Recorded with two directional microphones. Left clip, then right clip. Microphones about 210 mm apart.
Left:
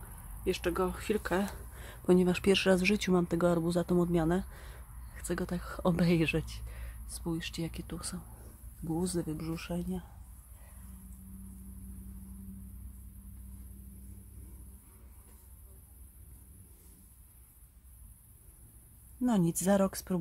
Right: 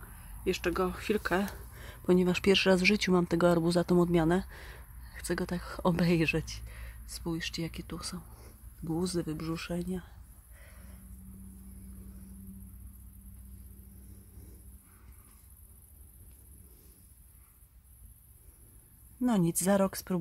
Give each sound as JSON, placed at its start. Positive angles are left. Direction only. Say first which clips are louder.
{"t": 0.4, "sound": "speech", "louder": "right 1 dB", "side_deg": -15}
{"t": 1.8, "sound": "speech", "louder": "even", "side_deg": -5}
{"t": 19.2, "sound": "speech", "louder": "right 1 dB", "side_deg": -15}